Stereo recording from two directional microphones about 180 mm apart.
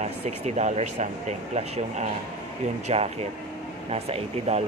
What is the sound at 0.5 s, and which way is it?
Speech, 40° right (ahead or behind).